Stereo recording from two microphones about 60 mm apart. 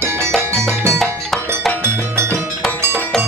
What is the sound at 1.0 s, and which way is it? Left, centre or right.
Music, centre.